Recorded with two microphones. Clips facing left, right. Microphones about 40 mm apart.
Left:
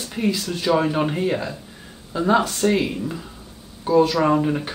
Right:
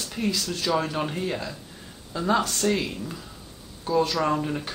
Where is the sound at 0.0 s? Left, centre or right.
Centre.